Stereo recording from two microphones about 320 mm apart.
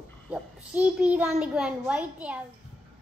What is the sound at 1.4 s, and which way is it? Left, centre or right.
A child's voice, centre.